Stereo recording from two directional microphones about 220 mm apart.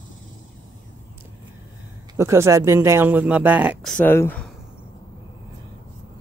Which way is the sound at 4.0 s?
10° left (ahead or behind).